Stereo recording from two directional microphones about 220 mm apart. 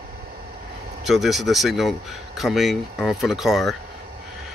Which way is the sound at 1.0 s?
Centre (ahead or behind).